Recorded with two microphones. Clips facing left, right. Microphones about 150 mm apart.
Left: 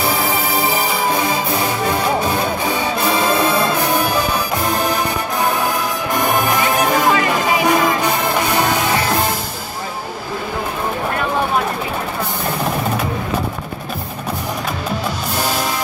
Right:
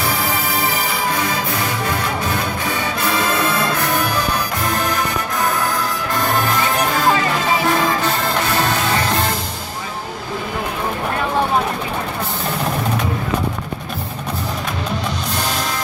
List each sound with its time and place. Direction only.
3.1 s music: 30° left (ahead or behind)
3.4 s music: 15° left (ahead or behind)
6.1 s music: 15° left (ahead or behind)